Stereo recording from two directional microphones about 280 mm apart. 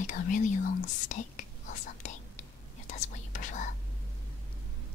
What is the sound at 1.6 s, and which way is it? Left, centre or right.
Whispering, left.